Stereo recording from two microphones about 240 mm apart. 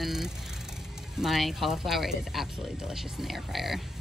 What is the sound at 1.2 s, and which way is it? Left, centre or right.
Speech, centre.